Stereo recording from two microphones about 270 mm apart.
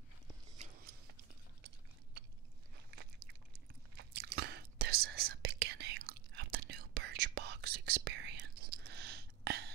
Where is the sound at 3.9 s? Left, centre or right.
Right.